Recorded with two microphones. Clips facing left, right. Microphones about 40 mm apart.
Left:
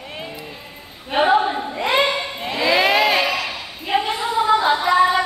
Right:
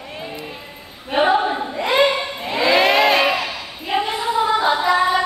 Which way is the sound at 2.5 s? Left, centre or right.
Right.